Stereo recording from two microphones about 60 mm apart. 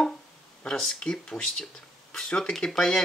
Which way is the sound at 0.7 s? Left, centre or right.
Centre.